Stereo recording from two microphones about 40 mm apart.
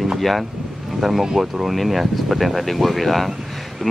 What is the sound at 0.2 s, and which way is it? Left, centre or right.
Speech, centre.